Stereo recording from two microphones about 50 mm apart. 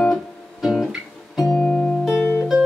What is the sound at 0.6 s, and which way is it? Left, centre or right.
Guitar, centre.